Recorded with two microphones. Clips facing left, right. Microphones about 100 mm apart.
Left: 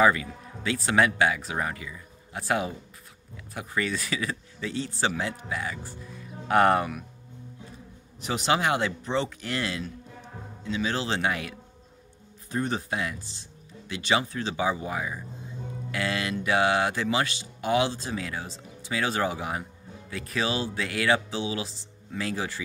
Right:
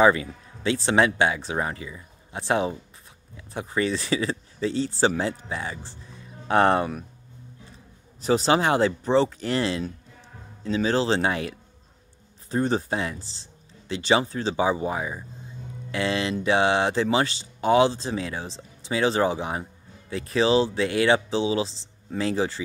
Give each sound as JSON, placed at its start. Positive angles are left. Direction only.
{"t": 0.0, "sound": "speech", "side_deg": -25}
{"t": 8.2, "sound": "speech", "side_deg": -35}